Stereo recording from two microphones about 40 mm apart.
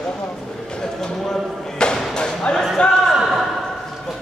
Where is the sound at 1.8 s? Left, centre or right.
Left.